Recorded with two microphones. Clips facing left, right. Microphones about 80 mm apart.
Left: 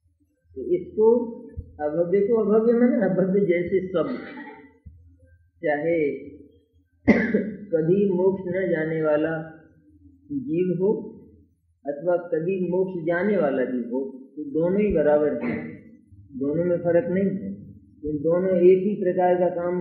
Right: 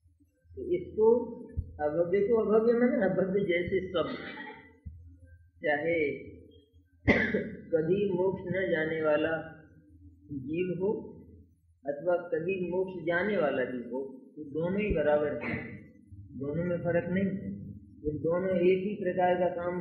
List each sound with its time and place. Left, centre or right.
0.7 s a man's voice: centre
7.1 s cough: centre
7.7 s a man's voice: centre